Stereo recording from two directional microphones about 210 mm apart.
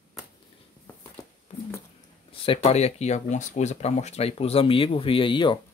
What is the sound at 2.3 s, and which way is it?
Speech, 25° left (ahead or behind).